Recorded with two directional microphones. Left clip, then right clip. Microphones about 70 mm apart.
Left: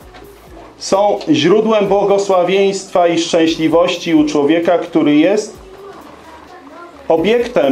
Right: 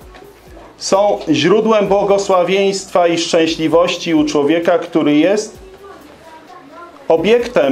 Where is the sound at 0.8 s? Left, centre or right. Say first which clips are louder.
Even; right.